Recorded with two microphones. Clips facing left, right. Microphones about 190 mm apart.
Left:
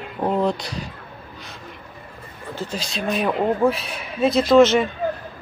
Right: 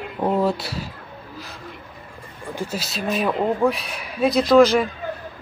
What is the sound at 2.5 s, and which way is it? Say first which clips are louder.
A man's voice: even; 10° right (ahead or behind).